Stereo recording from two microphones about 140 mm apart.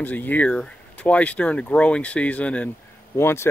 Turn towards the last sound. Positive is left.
turn(degrees=15)  # may be behind; listen again after turning